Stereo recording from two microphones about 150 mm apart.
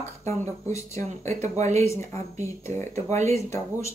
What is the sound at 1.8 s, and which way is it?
Speech, 20° left (ahead or behind).